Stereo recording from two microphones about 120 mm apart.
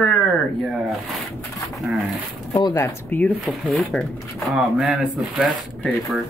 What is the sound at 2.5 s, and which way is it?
Speech, 25° left (ahead or behind).